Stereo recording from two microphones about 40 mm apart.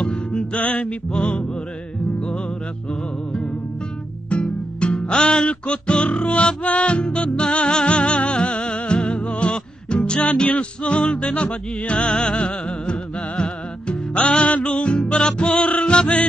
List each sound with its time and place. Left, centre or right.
0.0 s music: left
4.3 s music: left